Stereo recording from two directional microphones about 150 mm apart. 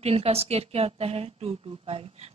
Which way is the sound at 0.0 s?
40° right (ahead or behind).